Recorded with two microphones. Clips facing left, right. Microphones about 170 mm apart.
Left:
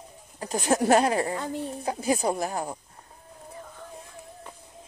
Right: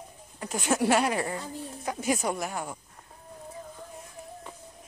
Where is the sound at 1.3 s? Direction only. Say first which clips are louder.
Left 5 dB; 70° left (ahead or behind).